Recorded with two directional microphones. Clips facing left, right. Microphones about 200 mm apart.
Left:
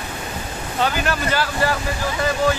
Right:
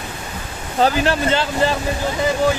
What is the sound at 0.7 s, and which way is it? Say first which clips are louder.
Speech: right 5 dB; 30° right (ahead or behind).